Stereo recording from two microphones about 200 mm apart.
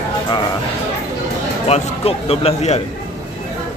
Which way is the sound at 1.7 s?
30° left (ahead or behind).